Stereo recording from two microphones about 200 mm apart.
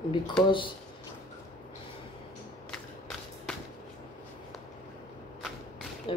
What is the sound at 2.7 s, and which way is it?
Walk, 5° left (ahead or behind).